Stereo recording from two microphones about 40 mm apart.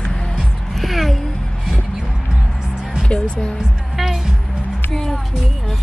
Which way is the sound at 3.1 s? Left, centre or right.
Left.